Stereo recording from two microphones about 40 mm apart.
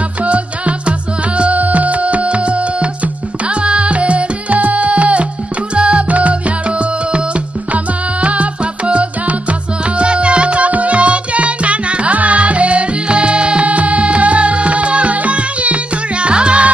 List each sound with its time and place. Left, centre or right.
0.2 s music: right
7.7 s music: right